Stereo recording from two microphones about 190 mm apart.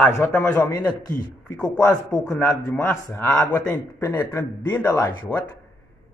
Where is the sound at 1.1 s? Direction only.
10° left (ahead or behind).